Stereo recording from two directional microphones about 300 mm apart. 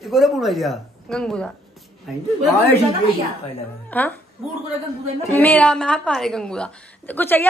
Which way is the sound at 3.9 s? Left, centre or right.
Centre.